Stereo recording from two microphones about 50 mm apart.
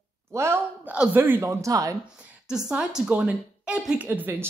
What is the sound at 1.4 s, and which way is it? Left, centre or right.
Speech, right.